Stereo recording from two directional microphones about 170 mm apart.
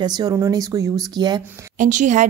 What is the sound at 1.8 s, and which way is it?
Speech, 45° right (ahead or behind).